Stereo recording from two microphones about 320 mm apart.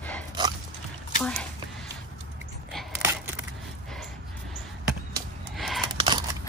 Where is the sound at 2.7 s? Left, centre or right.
Centre.